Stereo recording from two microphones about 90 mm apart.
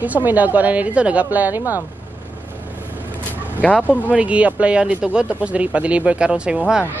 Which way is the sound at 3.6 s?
15° left (ahead or behind).